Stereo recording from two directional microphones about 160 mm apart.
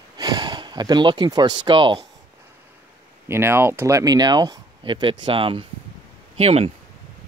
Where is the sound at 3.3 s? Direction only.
15° right (ahead or behind); by 6.7 s 40° right (ahead or behind).